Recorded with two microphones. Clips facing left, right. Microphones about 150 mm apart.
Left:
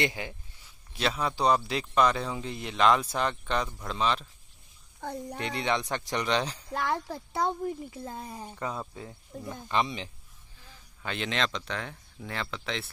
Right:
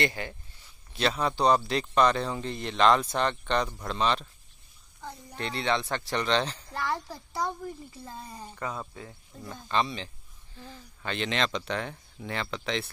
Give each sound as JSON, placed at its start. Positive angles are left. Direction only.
{"t": 0.0, "sound": "speech", "side_deg": 15}
{"t": 5.4, "sound": "speech", "side_deg": 15}
{"t": 8.0, "sound": "speech", "side_deg": 10}
{"t": 11.0, "sound": "speech", "side_deg": 0}